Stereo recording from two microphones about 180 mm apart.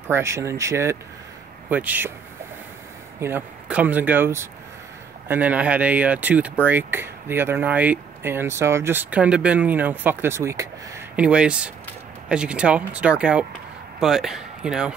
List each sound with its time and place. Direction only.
0.1 s speech: 15° right (ahead or behind)
3.2 s speech: 10° right (ahead or behind)